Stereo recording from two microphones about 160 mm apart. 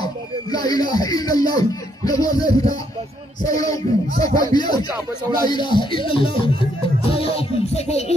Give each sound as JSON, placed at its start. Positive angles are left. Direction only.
{"t": 0.0, "sound": "speech", "side_deg": 25}
{"t": 5.4, "sound": "music", "side_deg": 30}